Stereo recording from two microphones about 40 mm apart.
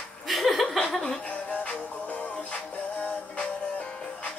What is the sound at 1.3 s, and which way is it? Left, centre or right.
Music, left.